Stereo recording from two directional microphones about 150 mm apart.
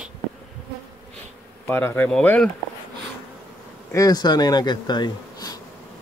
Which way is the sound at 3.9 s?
25° left (ahead or behind).